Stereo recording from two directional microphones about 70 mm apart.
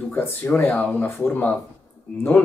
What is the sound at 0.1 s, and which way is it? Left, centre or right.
Speech, left.